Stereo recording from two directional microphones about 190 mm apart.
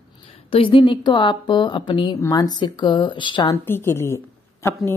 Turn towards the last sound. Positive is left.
turn(degrees=15)  # may be behind; listen again after turning